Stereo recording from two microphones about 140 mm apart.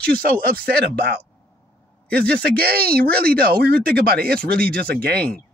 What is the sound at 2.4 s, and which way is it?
Speech, 90° right.